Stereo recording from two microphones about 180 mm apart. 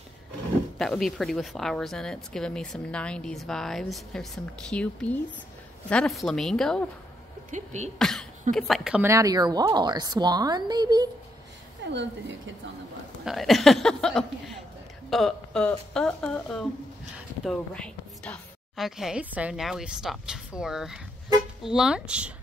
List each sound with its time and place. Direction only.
0.7 s speech: centre (ahead or behind)
7.5 s speech: 40° right (ahead or behind)
8.0 s cough: centre (ahead or behind)
8.5 s speech: centre (ahead or behind)
9.0 s a woman's voice: 20° right (ahead or behind)
11.9 s a woman's voice: 85° right
13.2 s speech: centre (ahead or behind)